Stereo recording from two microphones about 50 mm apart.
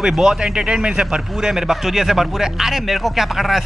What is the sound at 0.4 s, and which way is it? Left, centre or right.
Speech, centre.